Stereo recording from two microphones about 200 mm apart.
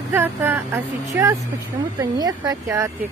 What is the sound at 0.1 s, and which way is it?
Speech, 10° right (ahead or behind).